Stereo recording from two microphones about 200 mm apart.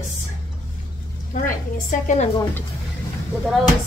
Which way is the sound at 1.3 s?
40° left (ahead or behind).